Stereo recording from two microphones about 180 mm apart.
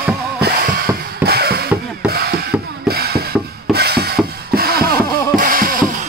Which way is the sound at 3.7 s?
65° right (ahead or behind).